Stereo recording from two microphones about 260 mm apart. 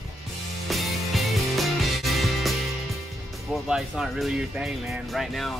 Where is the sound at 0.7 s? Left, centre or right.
Centre.